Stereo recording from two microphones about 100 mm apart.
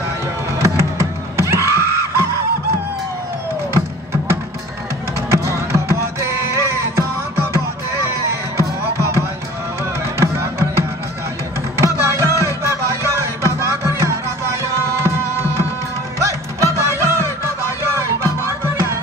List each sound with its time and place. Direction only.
0.6 s music: 30° right (ahead or behind)
5.4 s music: 30° right (ahead or behind)
8.3 s music: 30° right (ahead or behind)
10.1 s music: 25° right (ahead or behind)
11.8 s music: 30° right (ahead or behind)